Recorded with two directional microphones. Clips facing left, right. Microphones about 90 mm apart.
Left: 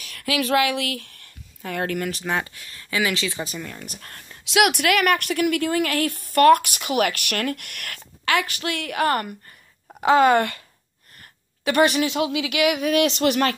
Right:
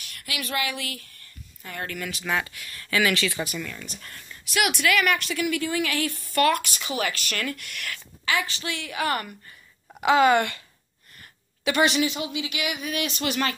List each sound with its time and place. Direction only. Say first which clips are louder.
0.2 s speech: left 9 dB; 90° left
2.0 s speech: left 3 dB; 40° left (ahead or behind); by 3.4 s 20° left (ahead or behind)
3.4 s a woman's voice: even; 35° left (ahead or behind)
4.0 s speech: left 1 dB; 55° left (ahead or behind)
4.5 s a woman's voice: left 5 dB; 70° left (ahead or behind); by 10.6 s 40° left (ahead or behind)
11.6 s a woman's voice: left 3 dB; 45° left (ahead or behind)
12.1 s speech: left 7 dB; 90° left
13.2 s speech: left 6 dB; 60° left (ahead or behind)